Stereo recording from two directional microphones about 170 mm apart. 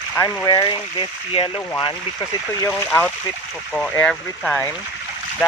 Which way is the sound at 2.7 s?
10° left (ahead or behind).